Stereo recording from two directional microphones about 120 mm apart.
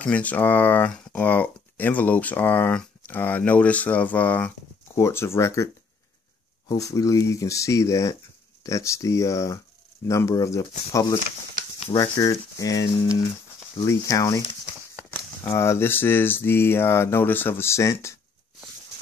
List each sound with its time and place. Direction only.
0.0 s speech: 10° left (ahead or behind)
6.7 s speech: 25° left (ahead or behind)